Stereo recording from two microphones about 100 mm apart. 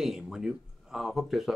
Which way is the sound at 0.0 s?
5° right (ahead or behind).